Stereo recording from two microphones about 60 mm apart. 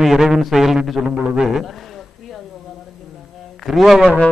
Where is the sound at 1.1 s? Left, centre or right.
Right.